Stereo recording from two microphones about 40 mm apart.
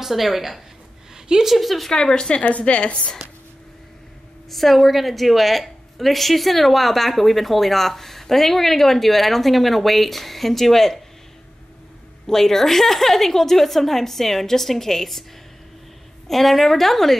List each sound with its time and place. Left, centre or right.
0.0 s a woman's voice: centre
2.0 s a woman's voice: left
2.4 s a woman's voice: left
4.5 s a woman's voice: centre
12.3 s a woman's voice: centre
16.3 s a woman's voice: centre